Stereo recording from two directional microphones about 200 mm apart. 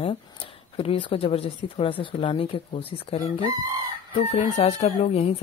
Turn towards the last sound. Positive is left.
turn(degrees=30)  # may be behind; listen again after turning